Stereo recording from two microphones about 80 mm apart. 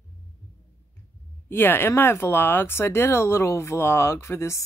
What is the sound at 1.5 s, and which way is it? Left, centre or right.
Speech, left.